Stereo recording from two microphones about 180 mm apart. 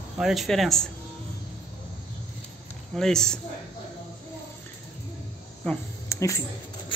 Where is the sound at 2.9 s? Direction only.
5° left (ahead or behind).